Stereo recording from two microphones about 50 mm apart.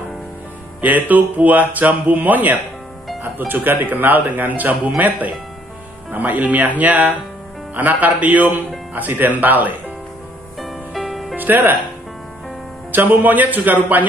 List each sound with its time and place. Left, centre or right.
0.7 s speech: right
10.6 s music: centre
11.3 s music: right
12.9 s speech: right